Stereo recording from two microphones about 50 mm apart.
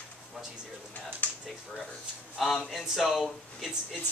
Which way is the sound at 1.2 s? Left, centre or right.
Left.